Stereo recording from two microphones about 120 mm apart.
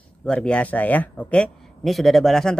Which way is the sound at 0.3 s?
10° left (ahead or behind).